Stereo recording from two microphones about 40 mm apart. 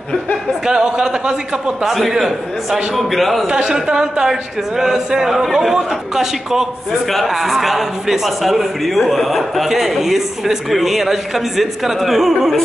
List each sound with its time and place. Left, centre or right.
0.7 s speech: right
2.0 s a man's voice: centre
3.7 s speech: centre
7.1 s a man's voice: centre